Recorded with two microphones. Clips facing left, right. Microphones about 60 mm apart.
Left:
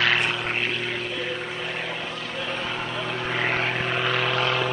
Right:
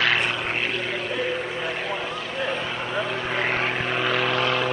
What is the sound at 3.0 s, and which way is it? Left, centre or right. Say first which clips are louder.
Vehicle: even; centre.